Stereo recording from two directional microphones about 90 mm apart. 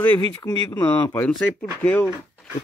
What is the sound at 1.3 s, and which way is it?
Speech, 15° left (ahead or behind).